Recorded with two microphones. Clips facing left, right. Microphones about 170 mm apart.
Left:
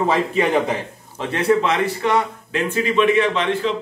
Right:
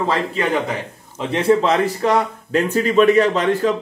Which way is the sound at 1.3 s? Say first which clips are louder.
Right 2 dB; 30° right (ahead or behind).